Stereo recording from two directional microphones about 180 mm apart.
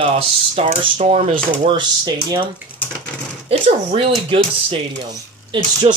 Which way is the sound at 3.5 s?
30° right (ahead or behind).